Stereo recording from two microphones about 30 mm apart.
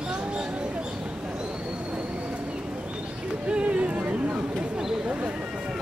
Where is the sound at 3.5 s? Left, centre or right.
Right.